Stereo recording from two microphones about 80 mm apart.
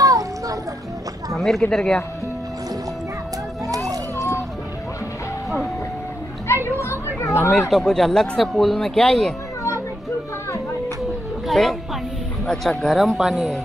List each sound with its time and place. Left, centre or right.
0.0 s music: right
1.3 s a sound: centre
1.7 s speech: centre
3.6 s a sound: right
6.8 s children playing: left
7.5 s speech: centre
11.4 s speech: centre